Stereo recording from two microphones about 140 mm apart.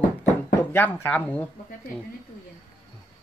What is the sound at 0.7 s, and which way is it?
Speech, 15° left (ahead or behind).